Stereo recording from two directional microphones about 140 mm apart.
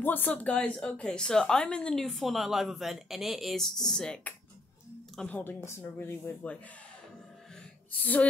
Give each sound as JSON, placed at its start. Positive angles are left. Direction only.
{"t": 0.0, "sound": "speech", "side_deg": 15}
{"t": 8.0, "sound": "speech", "side_deg": 10}